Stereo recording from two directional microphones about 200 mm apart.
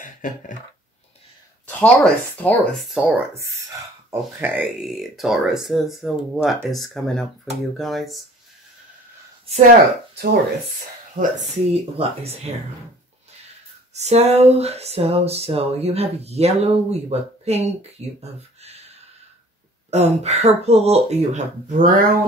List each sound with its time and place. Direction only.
0.0 s speech: 40° left (ahead or behind)
1.7 s speech: 10° left (ahead or behind)
11.1 s speech: 30° right (ahead or behind)
13.9 s speech: 35° right (ahead or behind)
18.6 s a sound: 30° right (ahead or behind)
19.9 s speech: 35° right (ahead or behind)